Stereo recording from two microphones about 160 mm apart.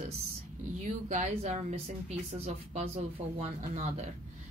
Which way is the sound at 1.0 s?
45° right (ahead or behind).